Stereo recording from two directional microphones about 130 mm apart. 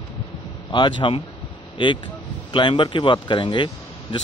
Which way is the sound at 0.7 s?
35° left (ahead or behind).